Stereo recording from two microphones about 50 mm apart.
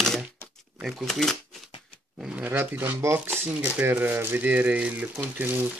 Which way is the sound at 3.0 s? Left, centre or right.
Right.